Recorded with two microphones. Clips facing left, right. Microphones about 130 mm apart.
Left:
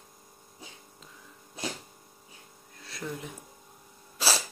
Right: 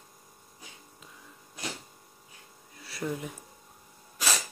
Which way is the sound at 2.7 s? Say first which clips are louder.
Right 4 dB; 5° right (ahead or behind).